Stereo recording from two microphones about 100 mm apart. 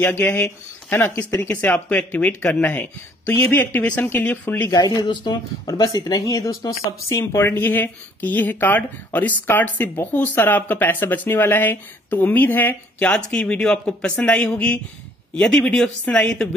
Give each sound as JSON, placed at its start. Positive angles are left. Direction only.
{"t": 0.0, "sound": "speech", "side_deg": 25}
{"t": 1.5, "sound": "speech", "side_deg": 15}
{"t": 4.6, "sound": "speech", "side_deg": 40}